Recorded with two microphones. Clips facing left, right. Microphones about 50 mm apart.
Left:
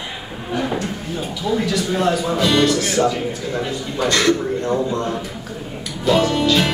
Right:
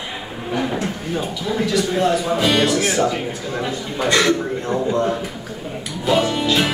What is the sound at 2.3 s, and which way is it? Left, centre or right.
A man's voice, centre.